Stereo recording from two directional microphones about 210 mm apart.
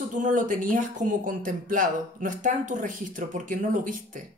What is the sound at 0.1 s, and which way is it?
Speech, 35° right (ahead or behind).